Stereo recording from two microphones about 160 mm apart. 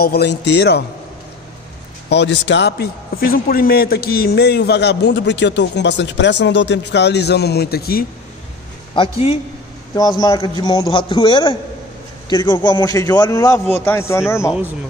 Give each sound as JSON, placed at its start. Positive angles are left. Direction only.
{"t": 0.0, "sound": "a man's voice", "side_deg": 85}
{"t": 2.0, "sound": "a man's voice", "side_deg": 90}
{"t": 8.9, "sound": "a man's voice", "side_deg": 35}
{"t": 9.9, "sound": "a man's voice", "side_deg": 25}